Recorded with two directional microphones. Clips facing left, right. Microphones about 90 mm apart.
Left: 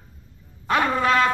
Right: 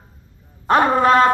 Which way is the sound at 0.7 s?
35° right (ahead or behind).